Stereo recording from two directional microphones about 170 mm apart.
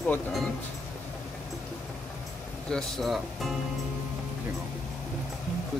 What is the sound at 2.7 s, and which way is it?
Speech, centre (ahead or behind).